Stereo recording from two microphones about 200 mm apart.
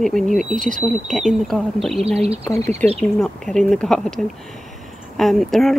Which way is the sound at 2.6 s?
35° right (ahead or behind).